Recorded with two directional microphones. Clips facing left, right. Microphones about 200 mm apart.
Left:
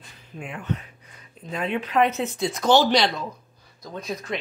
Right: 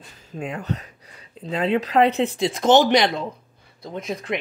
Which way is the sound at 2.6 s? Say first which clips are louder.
Right 3 dB; 20° right (ahead or behind).